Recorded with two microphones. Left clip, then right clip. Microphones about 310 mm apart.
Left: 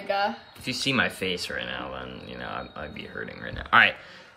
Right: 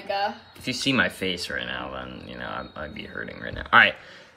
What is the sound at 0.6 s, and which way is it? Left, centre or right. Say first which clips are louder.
Speech: right 2 dB; centre.